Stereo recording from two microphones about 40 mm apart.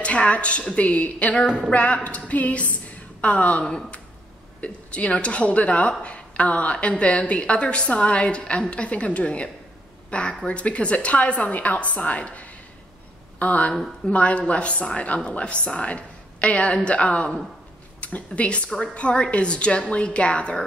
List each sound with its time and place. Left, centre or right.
0.0 s a woman's voice: left